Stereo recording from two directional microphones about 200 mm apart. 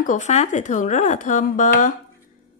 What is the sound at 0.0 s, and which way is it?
Speech, 40° left (ahead or behind).